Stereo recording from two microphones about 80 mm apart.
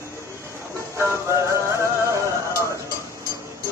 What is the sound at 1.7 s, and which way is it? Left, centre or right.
Music, right.